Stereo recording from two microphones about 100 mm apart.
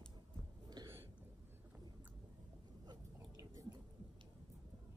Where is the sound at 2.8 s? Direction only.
40° right (ahead or behind).